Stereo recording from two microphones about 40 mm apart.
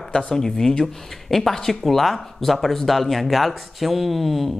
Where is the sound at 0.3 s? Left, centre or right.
Centre.